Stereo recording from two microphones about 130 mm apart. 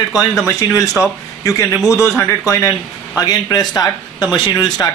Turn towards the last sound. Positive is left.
turn(degrees=30)  # may be behind; listen again after turning